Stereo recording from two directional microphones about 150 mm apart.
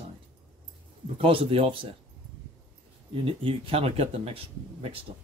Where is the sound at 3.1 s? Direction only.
40° right (ahead or behind).